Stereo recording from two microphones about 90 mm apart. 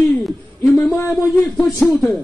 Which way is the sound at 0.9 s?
5° left (ahead or behind).